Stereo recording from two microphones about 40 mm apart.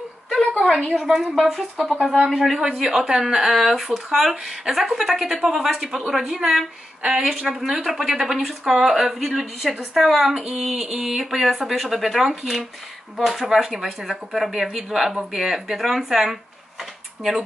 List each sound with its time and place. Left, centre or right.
0.4 s a sound: left
0.8 s speech: centre
1.2 s speech: centre
2.8 s speech: centre
10.3 s a sound: centre
10.6 s speech: centre